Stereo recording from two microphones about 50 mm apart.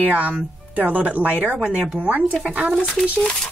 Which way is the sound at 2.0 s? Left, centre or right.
Right.